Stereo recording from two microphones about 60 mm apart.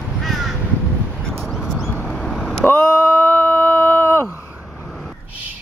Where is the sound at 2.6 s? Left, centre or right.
Left.